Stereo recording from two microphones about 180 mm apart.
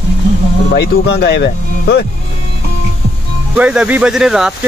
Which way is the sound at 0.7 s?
65° left (ahead or behind).